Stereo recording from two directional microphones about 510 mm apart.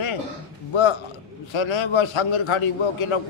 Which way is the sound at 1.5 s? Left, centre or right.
Left.